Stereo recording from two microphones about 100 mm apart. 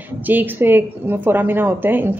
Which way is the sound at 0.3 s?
20° right (ahead or behind).